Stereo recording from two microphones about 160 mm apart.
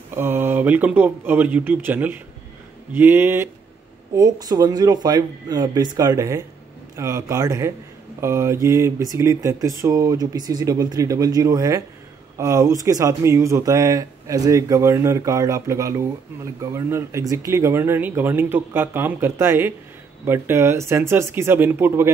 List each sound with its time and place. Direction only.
0.1 s speech: 15° right (ahead or behind)